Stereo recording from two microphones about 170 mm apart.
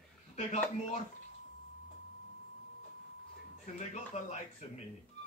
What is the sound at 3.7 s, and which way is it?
Speech, 45° left (ahead or behind).